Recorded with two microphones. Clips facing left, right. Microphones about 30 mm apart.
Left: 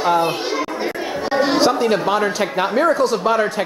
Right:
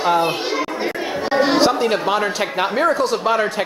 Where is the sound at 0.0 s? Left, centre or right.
Right.